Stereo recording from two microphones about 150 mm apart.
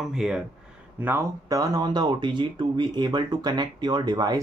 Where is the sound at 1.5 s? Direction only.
25° right (ahead or behind).